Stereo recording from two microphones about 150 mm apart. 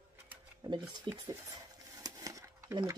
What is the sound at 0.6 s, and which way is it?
Speech, 30° right (ahead or behind).